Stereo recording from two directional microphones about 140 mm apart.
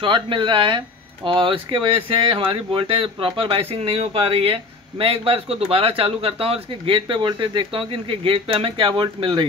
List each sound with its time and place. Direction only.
0.0 s speech: 35° right (ahead or behind)